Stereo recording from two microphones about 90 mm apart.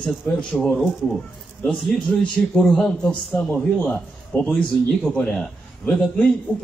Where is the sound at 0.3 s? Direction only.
5° left (ahead or behind).